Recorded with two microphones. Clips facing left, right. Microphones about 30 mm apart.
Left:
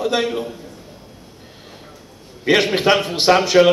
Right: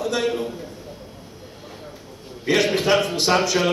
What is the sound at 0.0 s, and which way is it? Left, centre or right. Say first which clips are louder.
Speech: left 3 dB; left.